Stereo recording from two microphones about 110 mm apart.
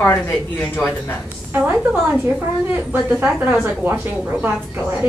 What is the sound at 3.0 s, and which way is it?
Speech, 15° right (ahead or behind).